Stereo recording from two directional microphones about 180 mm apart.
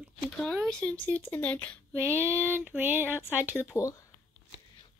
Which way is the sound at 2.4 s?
10° right (ahead or behind).